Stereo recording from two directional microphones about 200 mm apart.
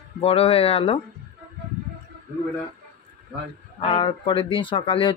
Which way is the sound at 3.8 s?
25° left (ahead or behind).